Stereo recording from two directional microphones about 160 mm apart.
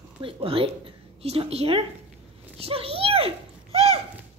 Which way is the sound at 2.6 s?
35° right (ahead or behind).